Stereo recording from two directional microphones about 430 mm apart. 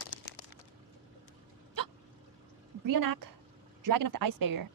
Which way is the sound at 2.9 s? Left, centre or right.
Right.